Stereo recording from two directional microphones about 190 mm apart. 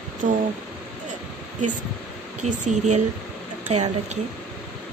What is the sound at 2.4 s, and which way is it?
Speech, 40° right (ahead or behind).